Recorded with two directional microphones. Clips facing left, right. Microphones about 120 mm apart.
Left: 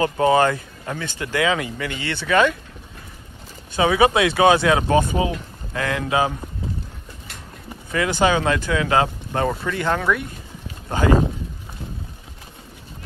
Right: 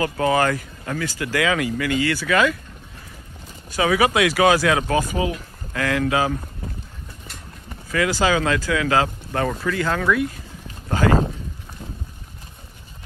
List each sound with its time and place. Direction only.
0.0 s speech: 25° left (ahead or behind)
3.7 s speech: 25° left (ahead or behind)
7.9 s speech: 25° left (ahead or behind)